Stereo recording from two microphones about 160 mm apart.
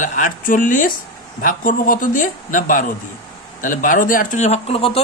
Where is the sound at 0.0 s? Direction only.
55° left (ahead or behind).